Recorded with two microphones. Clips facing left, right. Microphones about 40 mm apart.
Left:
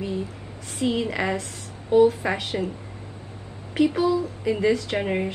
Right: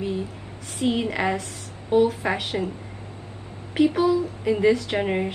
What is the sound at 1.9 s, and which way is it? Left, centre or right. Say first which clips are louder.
Speech: left 2 dB; right.